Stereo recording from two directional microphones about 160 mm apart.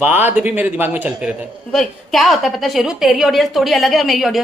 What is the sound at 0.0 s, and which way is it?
A man's voice, 10° right (ahead or behind).